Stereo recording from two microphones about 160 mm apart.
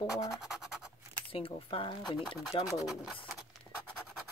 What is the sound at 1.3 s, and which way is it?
Speech, 35° left (ahead or behind).